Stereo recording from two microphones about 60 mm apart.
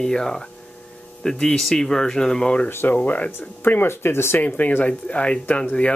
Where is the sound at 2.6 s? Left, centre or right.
Left.